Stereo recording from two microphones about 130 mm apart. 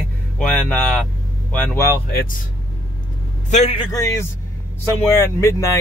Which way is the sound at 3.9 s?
20° left (ahead or behind).